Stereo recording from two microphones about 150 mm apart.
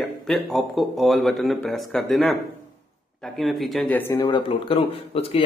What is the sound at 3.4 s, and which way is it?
Speech, centre (ahead or behind).